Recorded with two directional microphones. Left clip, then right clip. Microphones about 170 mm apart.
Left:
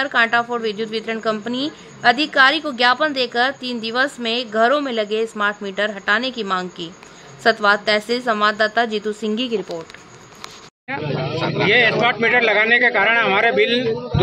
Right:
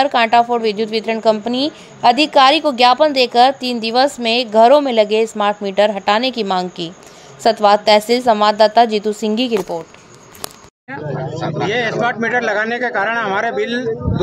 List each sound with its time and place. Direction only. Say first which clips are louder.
0.0 s a woman's voice: right 5 dB; 25° right (ahead or behind)
7.4 s a woman's voice: right 4 dB; 25° right (ahead or behind)
11.3 s a sound: left 2 dB; 10° left (ahead or behind)
11.7 s a man's voice: left 3 dB; 10° right (ahead or behind)